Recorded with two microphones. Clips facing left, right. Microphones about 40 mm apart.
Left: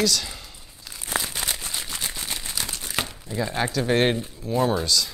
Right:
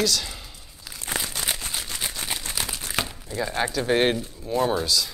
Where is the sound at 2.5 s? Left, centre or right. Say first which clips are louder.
Right 1 dB; centre.